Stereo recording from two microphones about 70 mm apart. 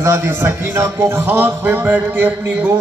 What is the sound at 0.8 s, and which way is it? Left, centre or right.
Speech, right.